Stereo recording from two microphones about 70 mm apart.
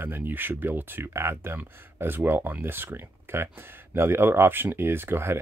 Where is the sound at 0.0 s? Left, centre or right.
Right.